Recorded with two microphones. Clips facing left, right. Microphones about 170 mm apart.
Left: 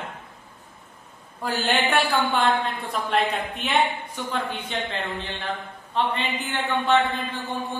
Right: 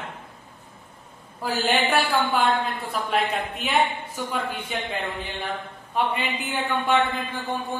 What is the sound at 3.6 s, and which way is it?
A woman's voice, centre (ahead or behind).